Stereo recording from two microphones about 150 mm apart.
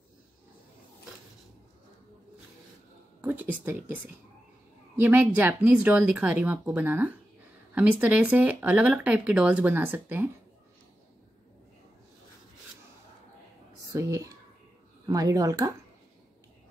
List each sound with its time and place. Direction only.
3.2 s speech: 10° right (ahead or behind)
13.9 s speech: 20° right (ahead or behind)